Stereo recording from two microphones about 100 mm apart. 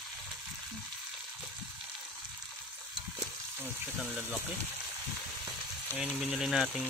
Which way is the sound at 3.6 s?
15° right (ahead or behind).